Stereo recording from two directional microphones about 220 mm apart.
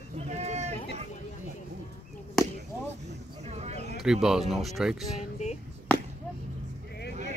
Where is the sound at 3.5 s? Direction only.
30° right (ahead or behind).